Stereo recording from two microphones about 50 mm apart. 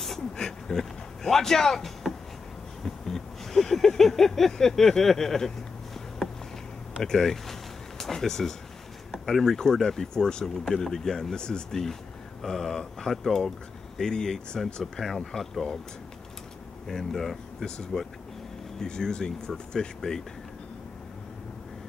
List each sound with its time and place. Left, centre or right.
0.0 s a sound: centre
7.0 s speech: centre
16.8 s speech: centre